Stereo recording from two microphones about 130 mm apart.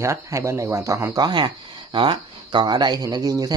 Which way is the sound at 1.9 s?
40° right (ahead or behind).